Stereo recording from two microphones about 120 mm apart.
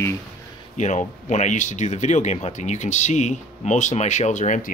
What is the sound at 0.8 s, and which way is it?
Speech, 85° left.